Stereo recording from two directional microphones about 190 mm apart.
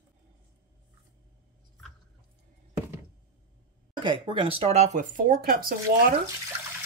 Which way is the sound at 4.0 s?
25° right (ahead or behind).